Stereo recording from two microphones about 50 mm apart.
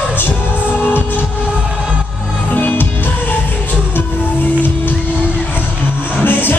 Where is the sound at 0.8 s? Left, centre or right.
Left.